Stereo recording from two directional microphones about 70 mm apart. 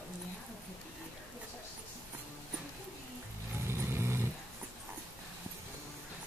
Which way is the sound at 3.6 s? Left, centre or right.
Right.